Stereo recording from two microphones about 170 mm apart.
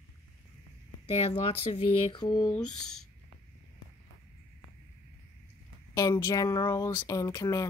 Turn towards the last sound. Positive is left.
turn(degrees=20)  # may be behind; listen again after turning